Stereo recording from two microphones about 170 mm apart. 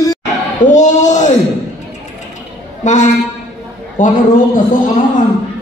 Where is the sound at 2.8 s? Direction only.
45° left (ahead or behind).